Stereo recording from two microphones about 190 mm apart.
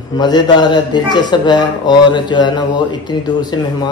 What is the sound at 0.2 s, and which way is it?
A man's voice, 25° left (ahead or behind).